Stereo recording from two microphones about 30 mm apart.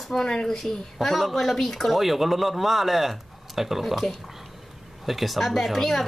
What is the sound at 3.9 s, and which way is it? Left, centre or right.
Speech, centre.